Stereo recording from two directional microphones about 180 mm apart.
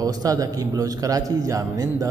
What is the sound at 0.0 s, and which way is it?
A man's voice, 20° right (ahead or behind).